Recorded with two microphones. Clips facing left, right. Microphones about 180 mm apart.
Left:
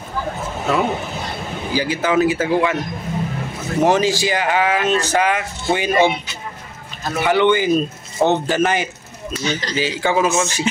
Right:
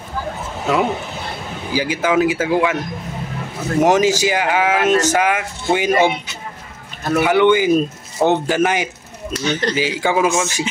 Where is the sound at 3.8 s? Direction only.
10° right (ahead or behind).